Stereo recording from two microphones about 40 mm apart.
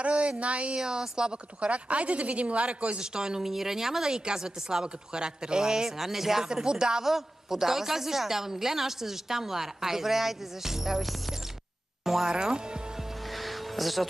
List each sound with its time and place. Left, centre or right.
0.0 s a woman's voice: right
0.7 s speech: centre
1.7 s a woman's voice: right
3.0 s speech: centre
13.4 s music: centre